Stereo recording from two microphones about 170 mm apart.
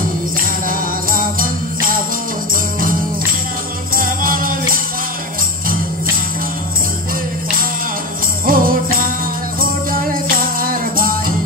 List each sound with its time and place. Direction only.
0.7 s music: 55° right (ahead or behind)
3.9 s music: 55° right (ahead or behind)
8.5 s jingle bell: 55° right (ahead or behind)
9.6 s music: 55° right (ahead or behind)